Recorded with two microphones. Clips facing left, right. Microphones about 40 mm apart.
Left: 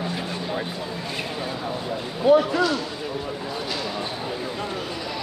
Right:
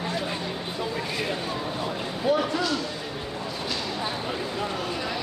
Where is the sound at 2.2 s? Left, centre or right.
Centre.